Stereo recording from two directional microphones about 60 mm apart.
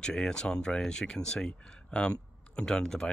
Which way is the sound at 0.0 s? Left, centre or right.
Centre.